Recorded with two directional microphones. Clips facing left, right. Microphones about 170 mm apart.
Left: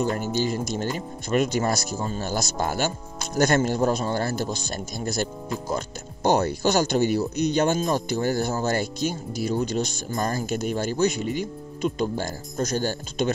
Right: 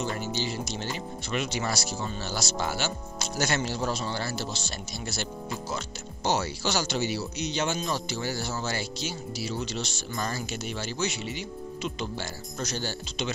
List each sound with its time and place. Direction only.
0.0 s a man's voice: 50° left (ahead or behind)